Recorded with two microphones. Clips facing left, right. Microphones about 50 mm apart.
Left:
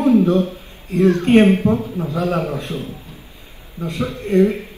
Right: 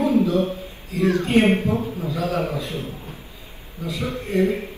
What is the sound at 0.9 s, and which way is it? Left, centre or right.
Speech, left.